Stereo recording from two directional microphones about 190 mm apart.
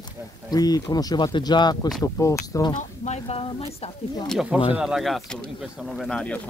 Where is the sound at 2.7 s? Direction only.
35° left (ahead or behind).